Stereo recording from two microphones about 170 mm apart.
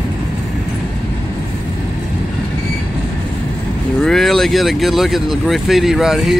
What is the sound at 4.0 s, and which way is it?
Speech, centre (ahead or behind).